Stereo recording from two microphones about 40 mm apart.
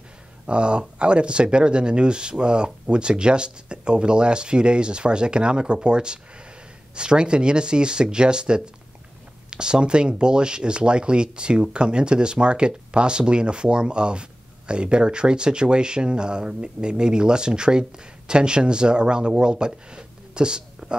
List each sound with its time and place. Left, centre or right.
0.5 s speech: right